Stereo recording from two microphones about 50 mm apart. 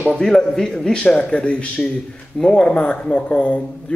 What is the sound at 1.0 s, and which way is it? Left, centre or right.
Speech, left.